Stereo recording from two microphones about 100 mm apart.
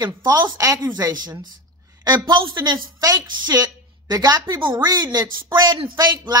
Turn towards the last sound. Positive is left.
turn(degrees=-40)  # may be behind; listen again after turning